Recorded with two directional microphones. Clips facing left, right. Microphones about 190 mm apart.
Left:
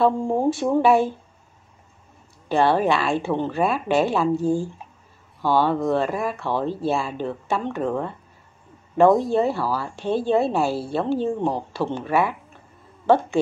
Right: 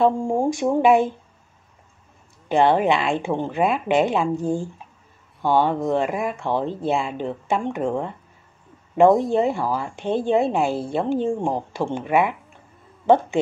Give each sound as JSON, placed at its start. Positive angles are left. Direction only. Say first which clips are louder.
{"t": 0.0, "sound": "a woman's voice", "louder": "even", "side_deg": -10}
{"t": 2.4, "sound": "a woman's voice", "louder": "right 1 dB", "side_deg": -20}